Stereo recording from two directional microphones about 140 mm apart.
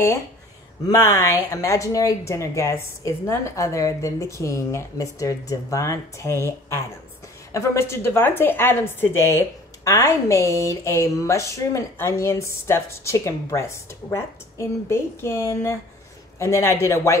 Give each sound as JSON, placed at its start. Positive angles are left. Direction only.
{"t": 0.8, "sound": "a woman's voice", "side_deg": 25}